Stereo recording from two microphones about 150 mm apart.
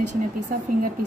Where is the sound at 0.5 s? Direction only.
75° right (ahead or behind).